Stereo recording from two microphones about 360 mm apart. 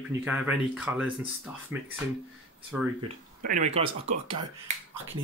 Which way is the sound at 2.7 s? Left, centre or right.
Centre.